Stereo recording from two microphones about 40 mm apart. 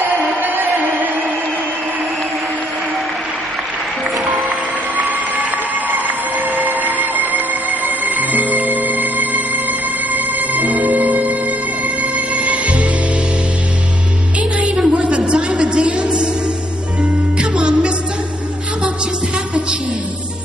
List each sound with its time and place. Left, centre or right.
0.1 s music: centre
4.3 s music: centre
5.0 s a sound: centre
6.8 s music: right
14.9 s a sound: right
17.0 s music: centre